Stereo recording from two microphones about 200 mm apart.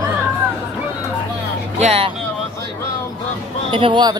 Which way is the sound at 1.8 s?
30° right (ahead or behind).